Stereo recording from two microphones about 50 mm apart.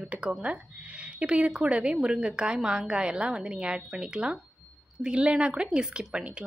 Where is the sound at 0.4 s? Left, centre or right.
Right.